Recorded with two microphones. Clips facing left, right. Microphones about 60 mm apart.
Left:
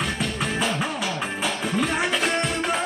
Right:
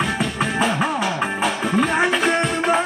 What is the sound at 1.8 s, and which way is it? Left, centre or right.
Music, centre.